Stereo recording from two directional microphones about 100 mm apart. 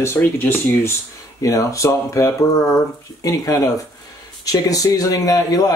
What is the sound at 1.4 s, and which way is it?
Speech, 35° left (ahead or behind).